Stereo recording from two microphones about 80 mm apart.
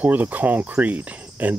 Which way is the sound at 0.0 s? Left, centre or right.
Right.